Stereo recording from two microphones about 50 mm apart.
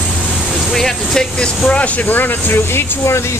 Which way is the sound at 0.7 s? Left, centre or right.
Centre.